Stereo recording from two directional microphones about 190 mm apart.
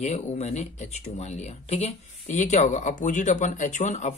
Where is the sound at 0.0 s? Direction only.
35° left (ahead or behind).